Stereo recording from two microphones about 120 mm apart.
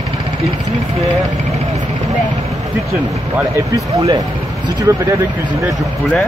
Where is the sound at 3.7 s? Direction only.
30° right (ahead or behind).